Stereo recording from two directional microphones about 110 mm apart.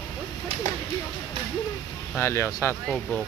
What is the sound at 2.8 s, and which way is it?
Speech, 10° left (ahead or behind).